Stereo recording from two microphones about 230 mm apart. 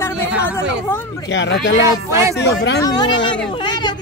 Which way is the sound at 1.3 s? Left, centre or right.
Left.